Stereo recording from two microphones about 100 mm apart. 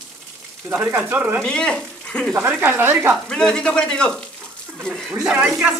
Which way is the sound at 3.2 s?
10° left (ahead or behind).